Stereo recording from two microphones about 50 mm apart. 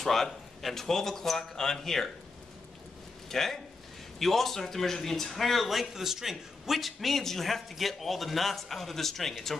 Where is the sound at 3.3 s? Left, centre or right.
Centre.